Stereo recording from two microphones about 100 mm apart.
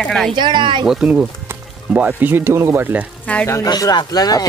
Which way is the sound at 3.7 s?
45° left (ahead or behind).